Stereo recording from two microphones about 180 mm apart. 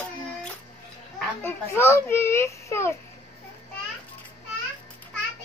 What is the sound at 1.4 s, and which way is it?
A child's voice, 15° left (ahead or behind).